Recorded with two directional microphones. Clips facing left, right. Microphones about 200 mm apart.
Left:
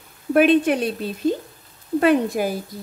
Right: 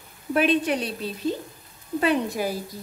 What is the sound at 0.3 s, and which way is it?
Speech, 55° left (ahead or behind).